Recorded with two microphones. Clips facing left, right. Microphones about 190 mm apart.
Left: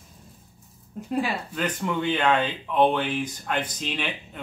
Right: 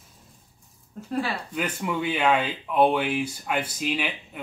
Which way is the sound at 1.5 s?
10° right (ahead or behind).